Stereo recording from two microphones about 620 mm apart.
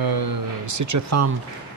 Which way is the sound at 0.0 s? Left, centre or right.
Right.